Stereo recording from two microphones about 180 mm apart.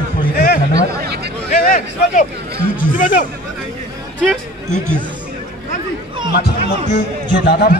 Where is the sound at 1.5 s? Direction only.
50° left (ahead or behind).